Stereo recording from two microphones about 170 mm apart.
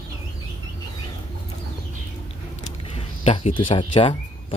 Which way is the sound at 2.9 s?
35° left (ahead or behind).